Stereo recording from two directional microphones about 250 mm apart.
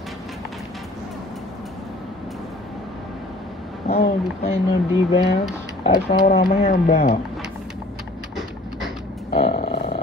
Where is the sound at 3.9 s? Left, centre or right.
Left.